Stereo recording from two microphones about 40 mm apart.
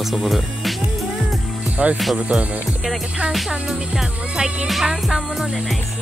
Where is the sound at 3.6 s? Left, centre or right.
Centre.